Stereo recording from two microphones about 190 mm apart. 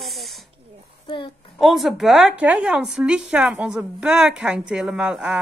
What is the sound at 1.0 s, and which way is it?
Child singing, 25° left (ahead or behind).